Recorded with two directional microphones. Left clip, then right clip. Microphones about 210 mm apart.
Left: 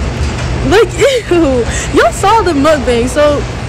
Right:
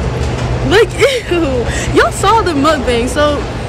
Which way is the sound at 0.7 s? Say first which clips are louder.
Left 2 dB; 5° left (ahead or behind).